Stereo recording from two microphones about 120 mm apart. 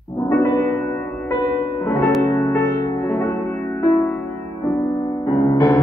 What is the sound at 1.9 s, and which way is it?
Music, 25° left (ahead or behind).